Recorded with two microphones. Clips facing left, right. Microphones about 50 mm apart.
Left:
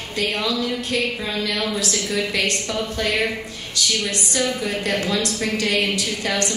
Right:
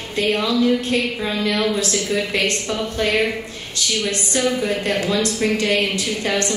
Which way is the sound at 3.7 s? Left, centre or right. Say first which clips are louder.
Right 1 dB; right.